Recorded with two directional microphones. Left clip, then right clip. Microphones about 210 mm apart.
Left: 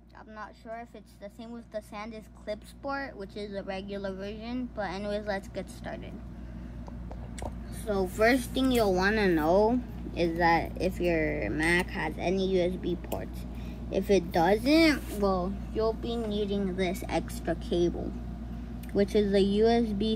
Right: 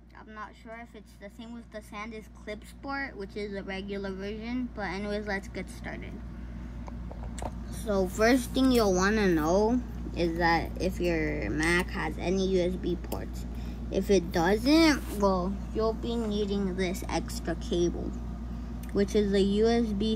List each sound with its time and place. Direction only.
2.5 s speech: 10° right (ahead or behind)
7.8 s a woman's voice: 25° right (ahead or behind)
19.2 s speech: 10° right (ahead or behind)